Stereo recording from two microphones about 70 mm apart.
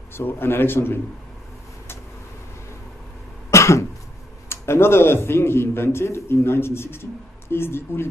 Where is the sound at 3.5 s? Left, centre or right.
Left.